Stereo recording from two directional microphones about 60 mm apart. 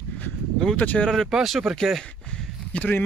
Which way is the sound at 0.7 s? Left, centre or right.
Left.